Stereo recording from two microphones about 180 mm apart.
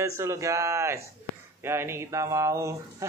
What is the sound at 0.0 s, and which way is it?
A man's voice, 15° right (ahead or behind).